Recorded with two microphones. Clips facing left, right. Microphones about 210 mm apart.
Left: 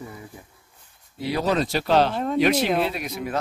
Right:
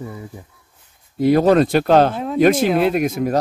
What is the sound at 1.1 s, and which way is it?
Speech, 50° right (ahead or behind).